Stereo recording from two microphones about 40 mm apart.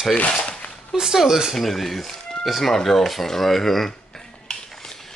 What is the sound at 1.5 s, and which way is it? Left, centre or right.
Speech, centre.